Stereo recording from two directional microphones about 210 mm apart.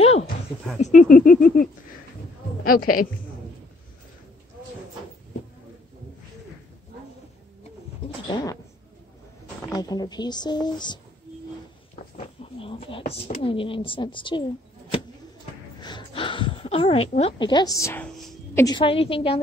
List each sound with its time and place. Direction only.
0.0 s a sound: 30° left (ahead or behind)
0.7 s a woman's voice: 35° left (ahead or behind)
8.3 s speech: 20° left (ahead or behind)
9.7 s speech: 20° left (ahead or behind)
11.9 s a sound: 25° left (ahead or behind)
13.4 s speech: 25° left (ahead or behind)
15.8 s speech: 25° left (ahead or behind)